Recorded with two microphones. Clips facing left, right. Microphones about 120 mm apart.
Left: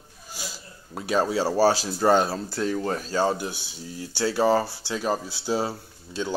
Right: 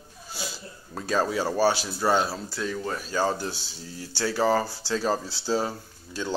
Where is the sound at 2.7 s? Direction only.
35° left (ahead or behind).